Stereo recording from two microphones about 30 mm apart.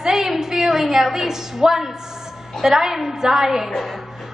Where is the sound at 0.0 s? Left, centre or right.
Centre.